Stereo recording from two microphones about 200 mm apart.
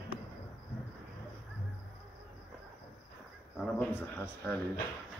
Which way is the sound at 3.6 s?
10° left (ahead or behind).